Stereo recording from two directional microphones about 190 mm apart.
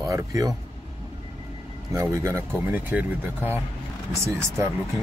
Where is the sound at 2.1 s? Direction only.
15° right (ahead or behind).